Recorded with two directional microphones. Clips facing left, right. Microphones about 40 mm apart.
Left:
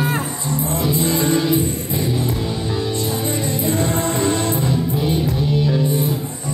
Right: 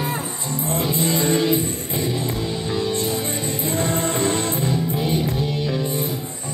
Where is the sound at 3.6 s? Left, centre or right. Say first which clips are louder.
Left 2 dB; left.